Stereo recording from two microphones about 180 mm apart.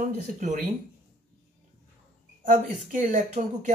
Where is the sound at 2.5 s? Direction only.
45° right (ahead or behind).